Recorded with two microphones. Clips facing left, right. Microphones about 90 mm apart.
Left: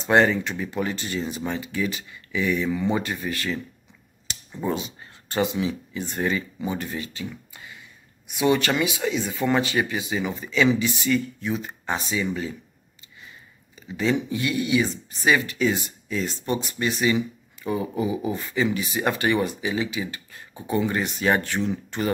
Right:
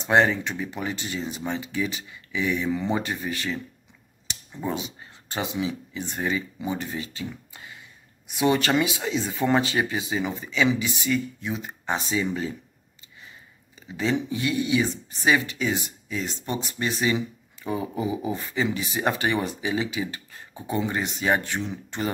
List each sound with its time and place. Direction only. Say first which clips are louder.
0.0 s speech: left 1 dB; 15° right (ahead or behind)
5.3 s speech: left 4 dB; 15° right (ahead or behind)
13.7 s speech: left 2 dB; 25° right (ahead or behind)
16.5 s speech: left 1 dB; 25° right (ahead or behind)